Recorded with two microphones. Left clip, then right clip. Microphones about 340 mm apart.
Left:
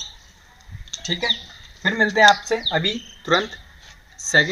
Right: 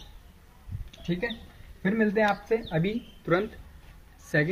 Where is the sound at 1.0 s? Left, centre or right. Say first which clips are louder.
Left 10 dB; left.